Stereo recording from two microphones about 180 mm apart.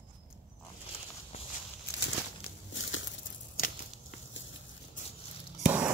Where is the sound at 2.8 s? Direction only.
90° left.